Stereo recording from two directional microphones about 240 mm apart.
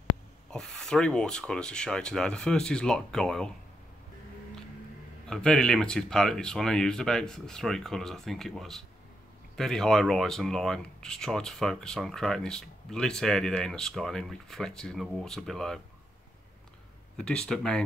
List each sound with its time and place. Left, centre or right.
0.5 s speech: centre
5.3 s speech: centre
17.2 s speech: centre